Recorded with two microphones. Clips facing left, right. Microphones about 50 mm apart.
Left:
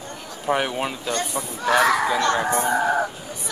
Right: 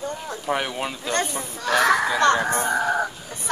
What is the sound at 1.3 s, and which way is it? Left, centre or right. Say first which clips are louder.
Speech: left 2 dB; centre.